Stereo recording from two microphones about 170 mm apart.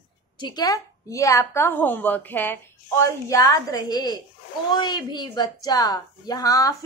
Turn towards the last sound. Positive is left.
turn(degrees=20)  # may be behind; listen again after turning